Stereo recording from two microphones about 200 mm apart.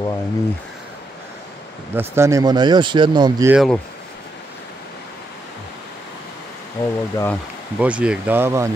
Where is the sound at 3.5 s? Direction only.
Centre (ahead or behind).